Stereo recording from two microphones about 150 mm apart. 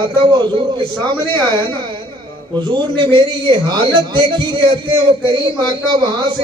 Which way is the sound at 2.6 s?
30° right (ahead or behind).